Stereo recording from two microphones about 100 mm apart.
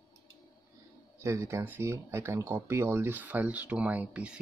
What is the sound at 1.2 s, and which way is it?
Speech, 30° right (ahead or behind).